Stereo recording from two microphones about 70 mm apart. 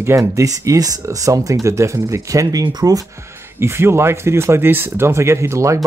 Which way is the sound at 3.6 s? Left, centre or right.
Right.